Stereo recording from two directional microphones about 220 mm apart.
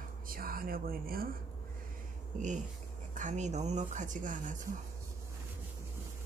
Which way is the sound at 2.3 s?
35° right (ahead or behind).